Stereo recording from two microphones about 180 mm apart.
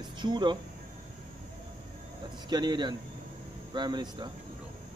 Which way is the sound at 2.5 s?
25° right (ahead or behind).